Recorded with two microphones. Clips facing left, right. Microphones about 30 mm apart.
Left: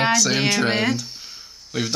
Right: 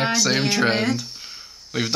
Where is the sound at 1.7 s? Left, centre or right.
Centre.